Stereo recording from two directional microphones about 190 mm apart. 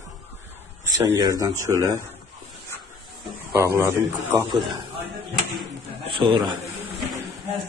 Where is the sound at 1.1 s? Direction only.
20° right (ahead or behind).